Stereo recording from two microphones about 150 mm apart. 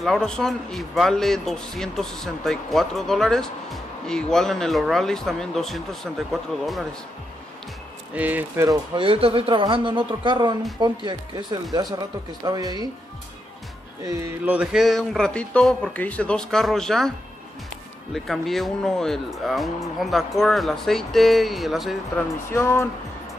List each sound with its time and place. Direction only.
0.0 s a man's voice: centre (ahead or behind)
8.1 s speech: 10° right (ahead or behind)
8.6 s a man's voice: 35° right (ahead or behind)
14.4 s a man's voice: 10° right (ahead or behind)
18.1 s a man's voice: centre (ahead or behind)
22.5 s speech: 20° left (ahead or behind)